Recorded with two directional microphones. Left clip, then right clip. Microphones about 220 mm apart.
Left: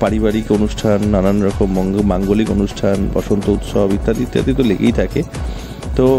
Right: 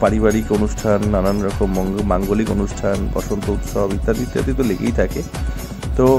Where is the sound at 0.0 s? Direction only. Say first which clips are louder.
Even; 25° left (ahead or behind).